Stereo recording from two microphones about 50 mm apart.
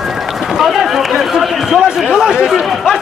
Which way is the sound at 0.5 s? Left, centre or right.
Centre.